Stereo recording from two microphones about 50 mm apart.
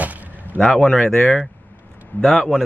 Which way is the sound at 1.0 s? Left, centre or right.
Left.